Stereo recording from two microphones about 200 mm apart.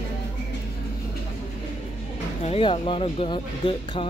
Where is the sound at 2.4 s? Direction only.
25° left (ahead or behind).